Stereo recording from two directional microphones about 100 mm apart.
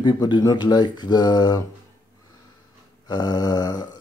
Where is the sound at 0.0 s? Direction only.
45° left (ahead or behind).